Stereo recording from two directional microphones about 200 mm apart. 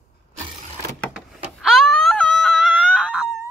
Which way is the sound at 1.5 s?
Centre (ahead or behind).